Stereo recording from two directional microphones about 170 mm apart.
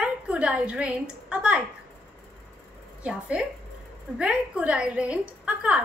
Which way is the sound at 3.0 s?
5° right (ahead or behind).